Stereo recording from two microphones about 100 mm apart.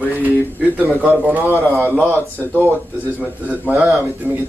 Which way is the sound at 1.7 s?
25° right (ahead or behind).